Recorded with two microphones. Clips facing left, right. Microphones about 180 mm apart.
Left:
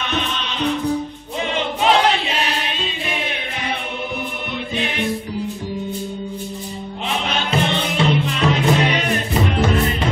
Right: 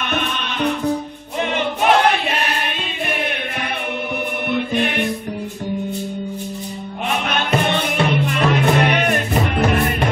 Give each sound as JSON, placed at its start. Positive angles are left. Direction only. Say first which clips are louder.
{"t": 0.0, "sound": "music", "louder": "right 1 dB", "side_deg": -55}
{"t": 1.5, "sound": "choir", "louder": "right 1 dB", "side_deg": -55}
{"t": 4.5, "sound": "music", "louder": "right 7 dB", "side_deg": -55}
{"t": 7.1, "sound": "music", "louder": "right 2 dB", "side_deg": -55}